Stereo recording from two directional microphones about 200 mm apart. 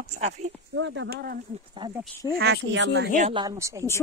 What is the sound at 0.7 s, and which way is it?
Speech, 70° right (ahead or behind).